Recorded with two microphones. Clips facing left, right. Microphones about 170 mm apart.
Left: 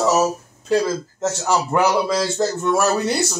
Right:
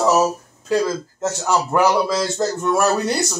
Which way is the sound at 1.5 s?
10° left (ahead or behind).